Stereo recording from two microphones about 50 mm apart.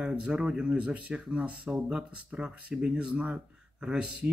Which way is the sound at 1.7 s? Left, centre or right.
Centre.